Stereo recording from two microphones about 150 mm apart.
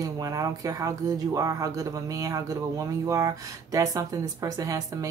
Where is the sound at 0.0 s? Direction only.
25° right (ahead or behind).